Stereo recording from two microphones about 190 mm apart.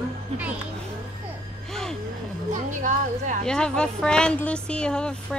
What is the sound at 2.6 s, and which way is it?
Music, 40° right (ahead or behind).